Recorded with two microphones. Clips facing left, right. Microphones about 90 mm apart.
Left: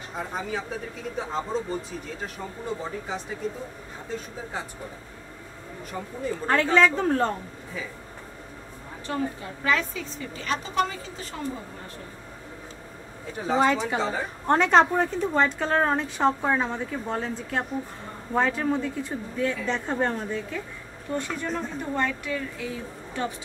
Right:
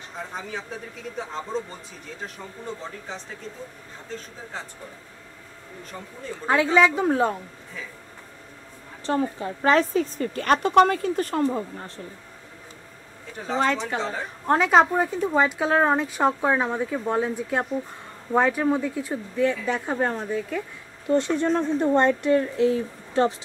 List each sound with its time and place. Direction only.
0.3 s speech: 5° left (ahead or behind)
6.4 s a woman's voice: 10° right (ahead or behind)
9.0 s a woman's voice: 35° right (ahead or behind); by 11.4 s 55° right (ahead or behind)
13.4 s a woman's voice: 5° left (ahead or behind)
21.1 s speech: 25° right (ahead or behind)
22.3 s a woman's voice: 50° right (ahead or behind)